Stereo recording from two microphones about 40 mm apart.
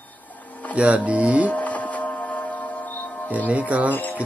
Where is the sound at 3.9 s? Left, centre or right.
Left.